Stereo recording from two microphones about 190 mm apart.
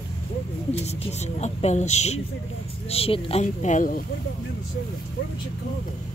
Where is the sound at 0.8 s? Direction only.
35° left (ahead or behind).